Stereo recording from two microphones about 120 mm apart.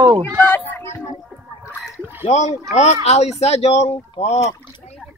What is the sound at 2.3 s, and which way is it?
Speech, 70° left (ahead or behind).